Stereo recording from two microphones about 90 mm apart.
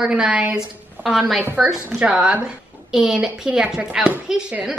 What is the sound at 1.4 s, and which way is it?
A woman's voice, 15° right (ahead or behind).